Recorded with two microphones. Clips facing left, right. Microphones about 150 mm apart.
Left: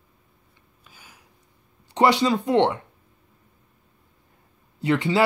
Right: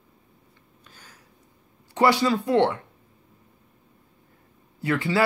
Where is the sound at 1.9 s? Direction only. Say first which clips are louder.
Left 1 dB; 20° left (ahead or behind).